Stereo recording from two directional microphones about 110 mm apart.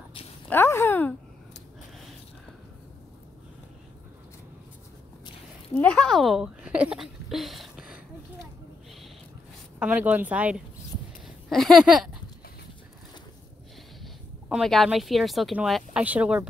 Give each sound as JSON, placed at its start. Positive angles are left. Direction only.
{"t": 0.5, "sound": "speech", "side_deg": 20}
{"t": 5.9, "sound": "speech", "side_deg": 5}
{"t": 9.8, "sound": "speech", "side_deg": -10}
{"t": 11.2, "sound": "speech", "side_deg": 0}
{"t": 14.5, "sound": "speech", "side_deg": 0}